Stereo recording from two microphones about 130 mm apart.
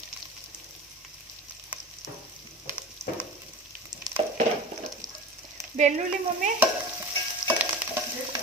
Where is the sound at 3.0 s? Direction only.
20° right (ahead or behind).